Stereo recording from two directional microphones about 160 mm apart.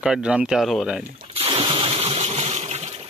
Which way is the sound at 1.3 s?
35° right (ahead or behind).